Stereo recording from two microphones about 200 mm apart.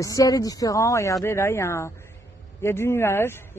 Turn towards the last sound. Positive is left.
turn(degrees=10)  # may be behind; listen again after turning